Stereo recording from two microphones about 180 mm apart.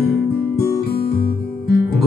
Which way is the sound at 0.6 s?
60° left (ahead or behind).